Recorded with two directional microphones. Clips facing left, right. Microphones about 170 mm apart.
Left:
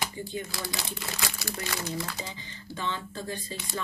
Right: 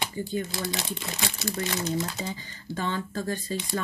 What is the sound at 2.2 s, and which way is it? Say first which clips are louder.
Speech: right 5 dB; 45° right (ahead or behind).